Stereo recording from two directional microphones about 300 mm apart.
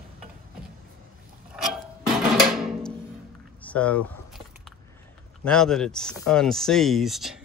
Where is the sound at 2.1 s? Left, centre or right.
Centre.